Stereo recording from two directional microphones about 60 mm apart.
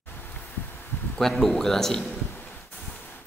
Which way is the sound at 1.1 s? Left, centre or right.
Centre.